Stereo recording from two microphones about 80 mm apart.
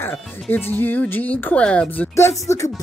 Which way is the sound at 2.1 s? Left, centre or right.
Left.